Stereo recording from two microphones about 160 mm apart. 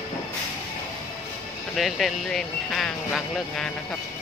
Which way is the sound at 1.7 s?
Centre (ahead or behind).